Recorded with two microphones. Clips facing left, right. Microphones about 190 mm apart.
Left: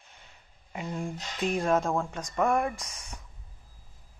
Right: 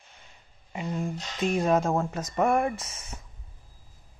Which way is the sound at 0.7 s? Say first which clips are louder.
Right 3 dB; centre (ahead or behind).